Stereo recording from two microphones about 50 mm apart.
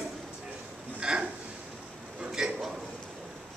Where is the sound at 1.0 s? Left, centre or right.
Centre.